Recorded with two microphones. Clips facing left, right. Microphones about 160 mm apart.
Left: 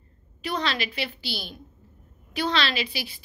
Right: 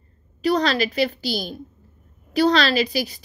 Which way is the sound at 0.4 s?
40° right (ahead or behind).